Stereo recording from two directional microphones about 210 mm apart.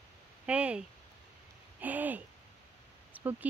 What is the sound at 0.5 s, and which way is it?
Speech, 5° right (ahead or behind).